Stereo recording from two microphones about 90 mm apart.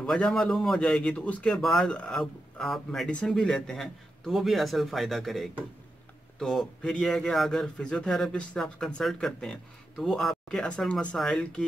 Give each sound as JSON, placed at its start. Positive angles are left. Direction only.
{"t": 0.0, "sound": "a man's voice", "side_deg": 10}